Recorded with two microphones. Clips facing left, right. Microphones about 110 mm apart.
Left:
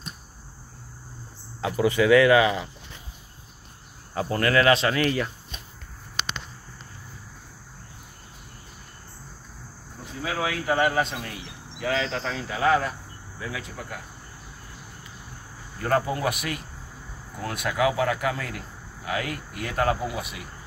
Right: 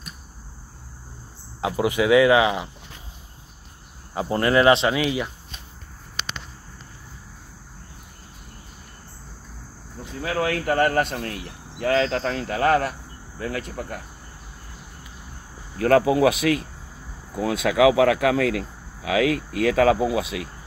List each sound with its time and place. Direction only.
1.6 s speech: 15° right (ahead or behind)
4.1 s speech: 20° right (ahead or behind)
4.9 s speech: 10° right (ahead or behind)
10.2 s speech: 55° right (ahead or behind)
15.8 s speech: 90° right